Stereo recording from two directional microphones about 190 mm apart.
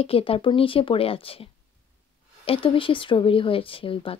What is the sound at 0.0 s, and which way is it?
A woman's voice, 30° left (ahead or behind).